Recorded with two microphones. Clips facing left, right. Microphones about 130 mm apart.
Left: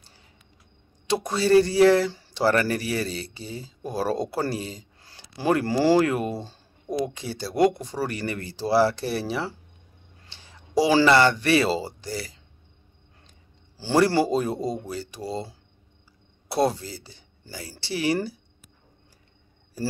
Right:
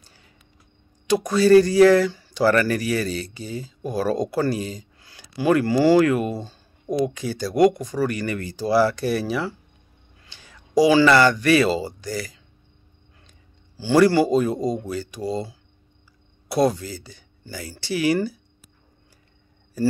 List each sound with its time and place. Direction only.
1.0 s speech: 25° left (ahead or behind)
13.7 s speech: 30° left (ahead or behind)